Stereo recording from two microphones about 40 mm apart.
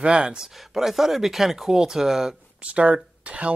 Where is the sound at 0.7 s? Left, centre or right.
Centre.